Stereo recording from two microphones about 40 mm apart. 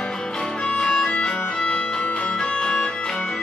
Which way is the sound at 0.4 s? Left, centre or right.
Left.